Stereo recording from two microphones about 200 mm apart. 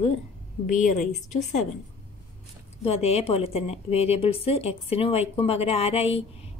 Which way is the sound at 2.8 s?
30° left (ahead or behind).